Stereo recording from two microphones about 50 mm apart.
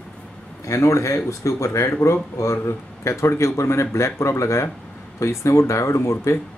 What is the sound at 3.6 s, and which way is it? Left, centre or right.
Speech, left.